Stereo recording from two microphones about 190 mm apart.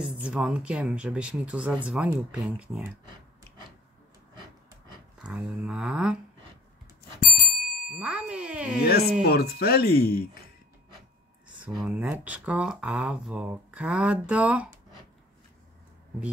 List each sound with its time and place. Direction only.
0.0 s speech: 5° right (ahead or behind)
5.2 s speech: 5° right (ahead or behind)
7.2 s bicycle bell: 50° left (ahead or behind)
7.9 s speech: 5° right (ahead or behind)
9.2 s speech: 55° left (ahead or behind)
11.8 s speech: 5° right (ahead or behind)